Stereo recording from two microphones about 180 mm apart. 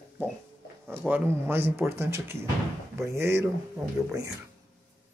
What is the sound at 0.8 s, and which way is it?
Speech, 10° right (ahead or behind).